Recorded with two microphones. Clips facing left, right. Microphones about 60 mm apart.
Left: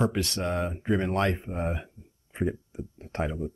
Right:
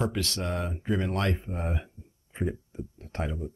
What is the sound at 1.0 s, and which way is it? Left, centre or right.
Speech, centre.